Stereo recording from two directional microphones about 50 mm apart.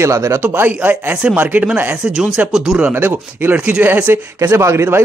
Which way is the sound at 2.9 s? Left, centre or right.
Right.